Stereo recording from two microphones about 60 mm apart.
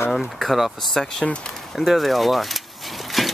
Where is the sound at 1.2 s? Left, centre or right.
Centre.